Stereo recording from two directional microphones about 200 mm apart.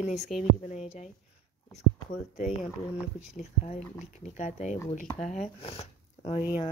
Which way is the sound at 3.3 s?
35° left (ahead or behind).